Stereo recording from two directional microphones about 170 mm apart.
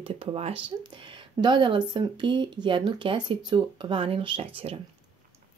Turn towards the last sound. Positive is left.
turn(degrees=-35)  # may be behind; listen again after turning